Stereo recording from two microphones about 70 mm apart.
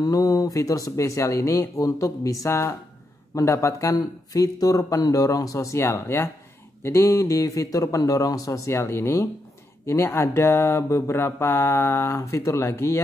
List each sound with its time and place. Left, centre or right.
0.0 s speech: left
3.9 s speech: left
12.2 s speech: left